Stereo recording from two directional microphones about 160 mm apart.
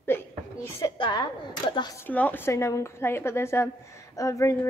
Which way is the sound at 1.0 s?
30° left (ahead or behind).